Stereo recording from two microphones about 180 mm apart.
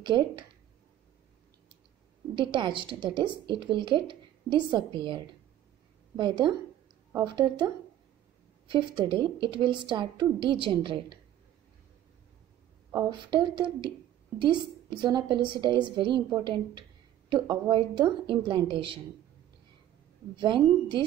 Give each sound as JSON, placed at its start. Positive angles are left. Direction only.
{"t": 0.0, "sound": "a woman's voice", "side_deg": -25}
{"t": 2.3, "sound": "a woman's voice", "side_deg": -25}
{"t": 12.9, "sound": "a woman's voice", "side_deg": -25}
{"t": 20.3, "sound": "a woman's voice", "side_deg": -25}